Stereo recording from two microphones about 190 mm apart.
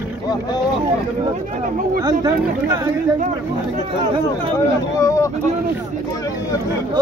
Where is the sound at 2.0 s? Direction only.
20° right (ahead or behind).